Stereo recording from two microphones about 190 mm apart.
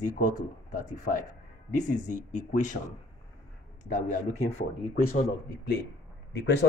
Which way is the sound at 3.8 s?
45° left (ahead or behind).